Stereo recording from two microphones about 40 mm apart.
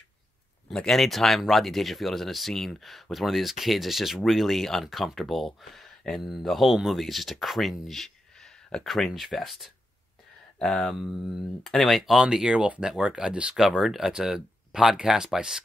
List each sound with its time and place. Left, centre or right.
0.7 s speech: centre
6.6 s speech: centre
7.9 s a sound: centre
8.8 s speech: centre
11.0 s speech: centre
12.1 s speech: centre
13.6 s speech: centre